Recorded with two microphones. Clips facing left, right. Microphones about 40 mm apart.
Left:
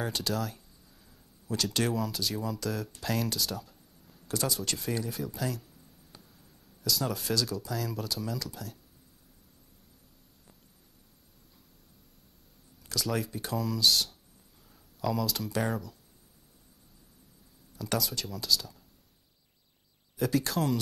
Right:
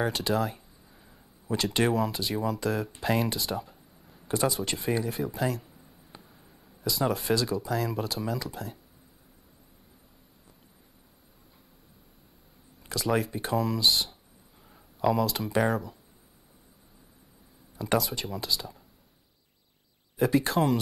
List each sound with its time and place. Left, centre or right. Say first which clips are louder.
0.2 s speech: right 5 dB; right
5.6 s a sound: right 3 dB; right
6.8 s speech: right 4 dB; right
12.8 s speech: right 5 dB; right
17.7 s speech: right 5 dB; right
20.2 s speech: right 5 dB; right